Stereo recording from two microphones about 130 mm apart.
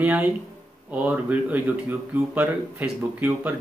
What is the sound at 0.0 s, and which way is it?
Speech, 10° right (ahead or behind).